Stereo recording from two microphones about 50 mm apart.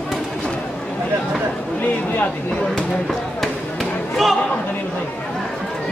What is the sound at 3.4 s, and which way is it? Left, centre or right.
Basketball bounce, centre.